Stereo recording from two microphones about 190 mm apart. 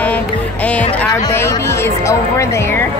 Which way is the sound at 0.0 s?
5° left (ahead or behind).